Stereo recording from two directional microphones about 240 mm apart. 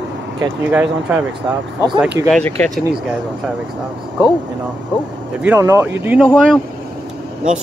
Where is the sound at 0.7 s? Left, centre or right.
Centre.